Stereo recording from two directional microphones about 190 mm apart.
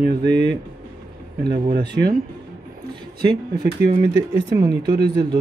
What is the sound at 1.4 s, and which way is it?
Speech, 55° right (ahead or behind).